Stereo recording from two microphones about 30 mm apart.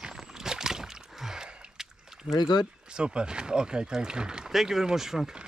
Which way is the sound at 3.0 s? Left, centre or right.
Right.